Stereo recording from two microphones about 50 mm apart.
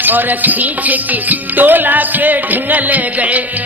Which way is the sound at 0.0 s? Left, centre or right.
Right.